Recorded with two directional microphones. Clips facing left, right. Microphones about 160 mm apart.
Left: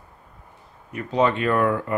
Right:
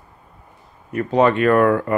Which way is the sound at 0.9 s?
55° right (ahead or behind).